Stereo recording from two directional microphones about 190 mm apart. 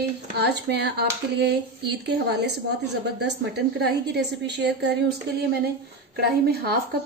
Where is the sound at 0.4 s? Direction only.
60° right (ahead or behind).